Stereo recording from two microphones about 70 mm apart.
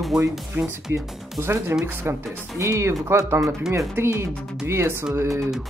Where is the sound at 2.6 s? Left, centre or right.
Right.